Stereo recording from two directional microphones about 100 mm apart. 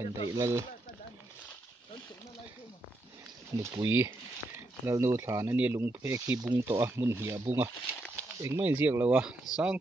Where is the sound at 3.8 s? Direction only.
25° right (ahead or behind).